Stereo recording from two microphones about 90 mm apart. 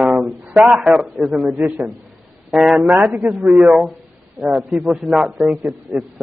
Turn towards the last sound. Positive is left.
turn(degrees=0)  # may be behind; listen again after turning